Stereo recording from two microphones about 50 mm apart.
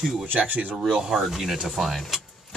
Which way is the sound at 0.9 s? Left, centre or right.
Centre.